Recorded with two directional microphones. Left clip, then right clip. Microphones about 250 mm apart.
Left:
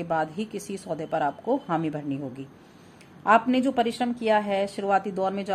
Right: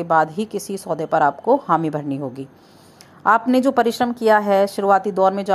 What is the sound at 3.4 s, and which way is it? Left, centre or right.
A woman's voice, centre.